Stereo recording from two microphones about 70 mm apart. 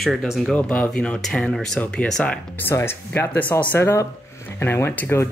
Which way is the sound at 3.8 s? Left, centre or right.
Left.